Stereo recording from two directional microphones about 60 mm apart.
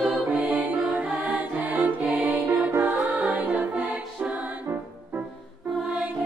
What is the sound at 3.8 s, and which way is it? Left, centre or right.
Music, centre.